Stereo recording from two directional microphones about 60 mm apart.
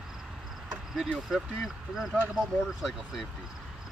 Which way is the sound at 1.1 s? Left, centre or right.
Centre.